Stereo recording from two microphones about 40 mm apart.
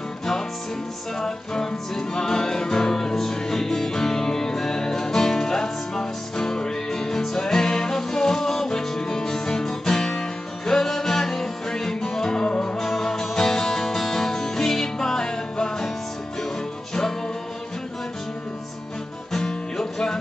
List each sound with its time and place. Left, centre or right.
1.1 s music: centre
12.4 s music: left
12.7 s music: centre
19.3 s music: centre